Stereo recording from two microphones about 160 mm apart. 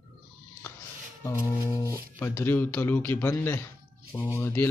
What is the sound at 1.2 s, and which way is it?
Speech, 15° left (ahead or behind).